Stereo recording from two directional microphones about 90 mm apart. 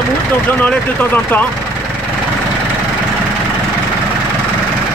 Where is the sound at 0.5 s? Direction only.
20° left (ahead or behind).